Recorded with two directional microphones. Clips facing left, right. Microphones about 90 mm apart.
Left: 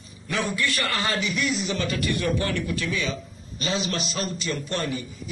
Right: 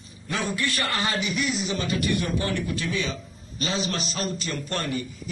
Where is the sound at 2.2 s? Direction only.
20° right (ahead or behind).